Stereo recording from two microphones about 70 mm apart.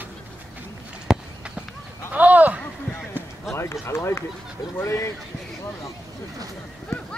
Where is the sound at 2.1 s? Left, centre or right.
Right.